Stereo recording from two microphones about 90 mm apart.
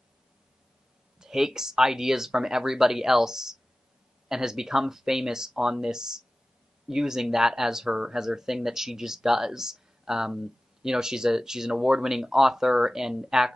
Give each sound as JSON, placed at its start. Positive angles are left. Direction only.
{"t": 1.2, "sound": "speech", "side_deg": -5}